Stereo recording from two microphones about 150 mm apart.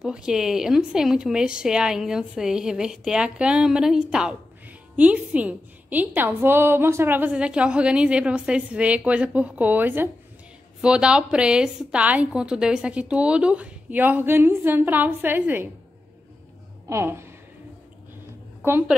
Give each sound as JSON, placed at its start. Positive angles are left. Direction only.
{"t": 0.0, "sound": "a woman's voice", "side_deg": -5}
{"t": 16.9, "sound": "a woman's voice", "side_deg": -15}
{"t": 18.6, "sound": "a woman's voice", "side_deg": -15}